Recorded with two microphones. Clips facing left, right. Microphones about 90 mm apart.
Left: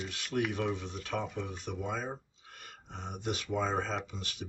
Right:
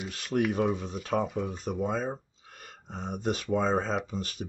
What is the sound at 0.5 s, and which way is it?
Speech, 45° right (ahead or behind).